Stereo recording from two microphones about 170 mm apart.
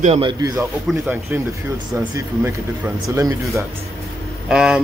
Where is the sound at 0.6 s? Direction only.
10° right (ahead or behind).